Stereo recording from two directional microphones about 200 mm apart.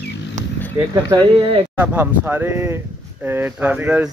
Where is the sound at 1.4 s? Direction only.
30° right (ahead or behind).